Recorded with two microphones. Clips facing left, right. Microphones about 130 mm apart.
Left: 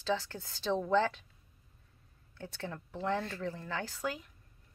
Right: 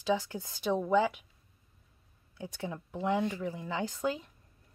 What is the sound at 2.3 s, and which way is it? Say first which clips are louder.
Speech: right 3 dB; 15° right (ahead or behind).